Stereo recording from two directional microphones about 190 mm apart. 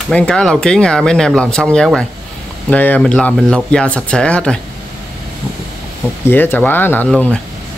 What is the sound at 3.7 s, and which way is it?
Speech, 5° left (ahead or behind).